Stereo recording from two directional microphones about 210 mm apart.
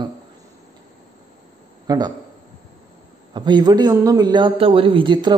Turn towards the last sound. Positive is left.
turn(degrees=-25)  # may be behind; listen again after turning